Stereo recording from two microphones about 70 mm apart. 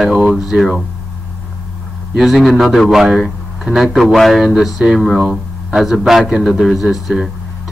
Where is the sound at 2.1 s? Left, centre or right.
Centre.